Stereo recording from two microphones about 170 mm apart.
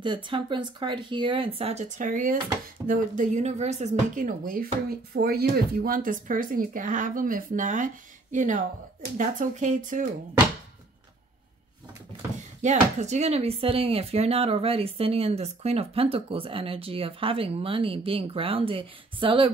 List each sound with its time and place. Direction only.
0.0 s speech: 30° right (ahead or behind); by 4.6 s 55° right (ahead or behind)
5.1 s speech: 65° right (ahead or behind); by 10.0 s 50° right (ahead or behind)
12.6 s speech: 40° right (ahead or behind)